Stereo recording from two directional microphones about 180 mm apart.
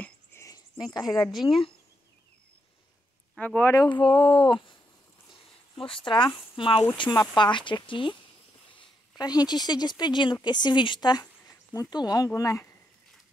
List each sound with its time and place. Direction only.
0.0 s cricket: 15° left (ahead or behind)
0.9 s speech: 20° left (ahead or behind)
3.3 s speech: 10° left (ahead or behind); by 8.2 s 30° left (ahead or behind)
9.2 s speech: 20° left (ahead or behind)